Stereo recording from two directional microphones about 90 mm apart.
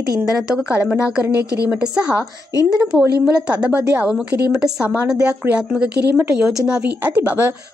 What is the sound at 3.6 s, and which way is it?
A woman's voice, 10° right (ahead or behind).